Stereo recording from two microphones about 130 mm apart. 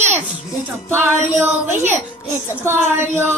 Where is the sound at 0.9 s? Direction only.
15° right (ahead or behind).